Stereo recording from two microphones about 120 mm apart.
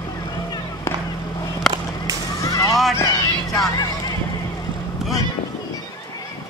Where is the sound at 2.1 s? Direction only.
30° right (ahead or behind).